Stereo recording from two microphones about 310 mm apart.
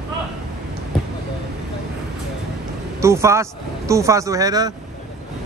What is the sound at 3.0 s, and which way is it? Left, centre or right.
A man's voice, centre.